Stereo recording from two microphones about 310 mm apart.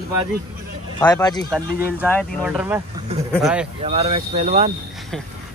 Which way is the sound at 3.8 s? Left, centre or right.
Centre.